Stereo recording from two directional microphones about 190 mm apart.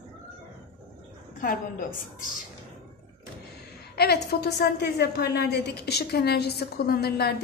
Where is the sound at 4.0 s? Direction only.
55° left (ahead or behind).